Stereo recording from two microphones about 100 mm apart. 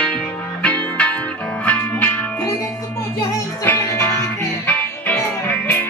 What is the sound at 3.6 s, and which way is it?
Music, 20° left (ahead or behind).